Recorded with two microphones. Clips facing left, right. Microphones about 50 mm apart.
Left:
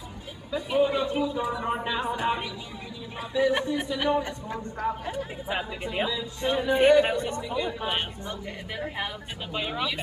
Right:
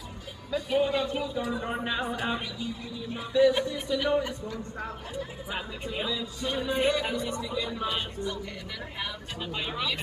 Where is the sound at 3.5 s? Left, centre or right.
Left.